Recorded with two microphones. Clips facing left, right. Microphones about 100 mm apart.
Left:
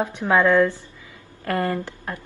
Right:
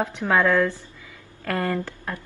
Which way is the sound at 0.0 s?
20° left (ahead or behind).